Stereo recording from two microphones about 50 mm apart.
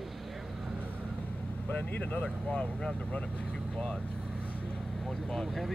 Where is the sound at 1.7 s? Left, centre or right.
Left.